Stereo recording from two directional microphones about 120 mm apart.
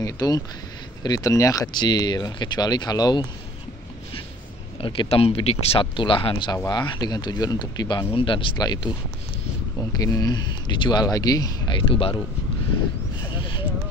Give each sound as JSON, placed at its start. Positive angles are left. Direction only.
{"t": 0.0, "sound": "speech", "side_deg": 30}
{"t": 4.7, "sound": "speech", "side_deg": 50}
{"t": 8.1, "sound": "speech", "side_deg": 45}
{"t": 9.8, "sound": "speech", "side_deg": 25}
{"t": 11.9, "sound": "speech", "side_deg": 50}
{"t": 13.3, "sound": "a sound", "side_deg": 45}